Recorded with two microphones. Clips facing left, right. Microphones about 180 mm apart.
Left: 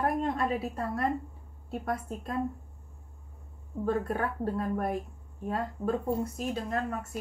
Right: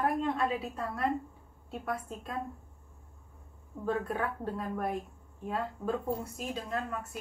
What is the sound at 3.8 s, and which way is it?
Speech, 40° left (ahead or behind).